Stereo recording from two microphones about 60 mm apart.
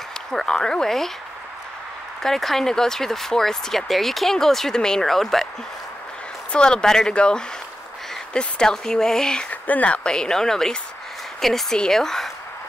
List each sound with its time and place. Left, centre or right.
0.3 s speech: centre
2.2 s speech: centre
6.5 s speech: centre
9.5 s speech: left
10.0 s speech: centre